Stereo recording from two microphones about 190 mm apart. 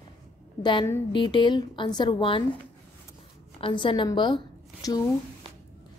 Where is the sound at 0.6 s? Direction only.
25° left (ahead or behind).